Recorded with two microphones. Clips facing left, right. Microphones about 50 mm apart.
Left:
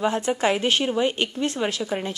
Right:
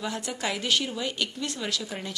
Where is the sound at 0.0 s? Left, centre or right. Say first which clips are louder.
Left 9 dB; left.